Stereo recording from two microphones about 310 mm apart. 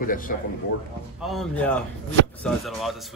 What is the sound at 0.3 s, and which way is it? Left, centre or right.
Speech, left.